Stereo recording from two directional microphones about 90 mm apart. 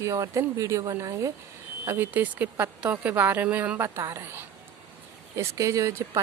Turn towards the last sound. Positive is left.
turn(degrees=-35)  # may be behind; listen again after turning